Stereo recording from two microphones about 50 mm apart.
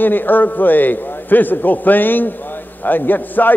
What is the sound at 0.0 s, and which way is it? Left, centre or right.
A man's voice, left.